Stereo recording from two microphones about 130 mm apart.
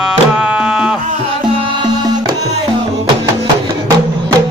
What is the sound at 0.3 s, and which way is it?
Music, 5° right (ahead or behind).